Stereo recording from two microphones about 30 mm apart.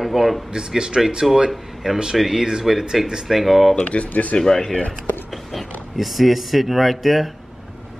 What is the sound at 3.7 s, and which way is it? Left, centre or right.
Speech, left.